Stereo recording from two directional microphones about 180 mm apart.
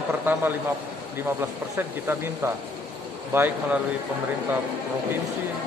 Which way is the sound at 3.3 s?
10° right (ahead or behind).